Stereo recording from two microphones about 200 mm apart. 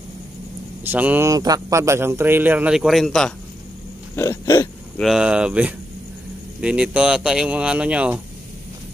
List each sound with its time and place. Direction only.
0.9 s speech: 10° right (ahead or behind)
4.1 s speech: 15° left (ahead or behind)
5.0 s speech: 5° right (ahead or behind)